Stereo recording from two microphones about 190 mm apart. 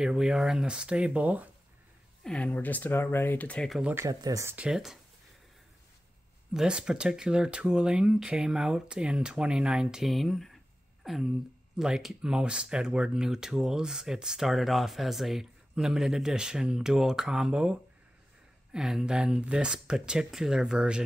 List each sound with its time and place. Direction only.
0.0 s speech: 5° right (ahead or behind)
2.2 s speech: 5° left (ahead or behind)
3.9 s speech: 15° right (ahead or behind)
4.6 s speech: centre (ahead or behind)
6.5 s speech: 5° right (ahead or behind)